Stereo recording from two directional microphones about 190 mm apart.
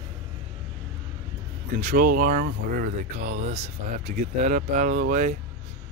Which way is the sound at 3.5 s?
35° right (ahead or behind).